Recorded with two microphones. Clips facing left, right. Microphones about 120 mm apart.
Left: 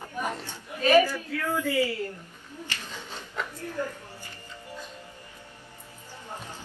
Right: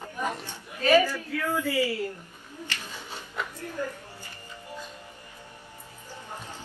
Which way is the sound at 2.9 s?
10° right (ahead or behind).